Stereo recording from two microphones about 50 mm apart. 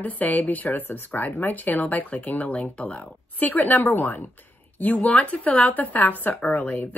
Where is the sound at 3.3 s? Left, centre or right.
Left.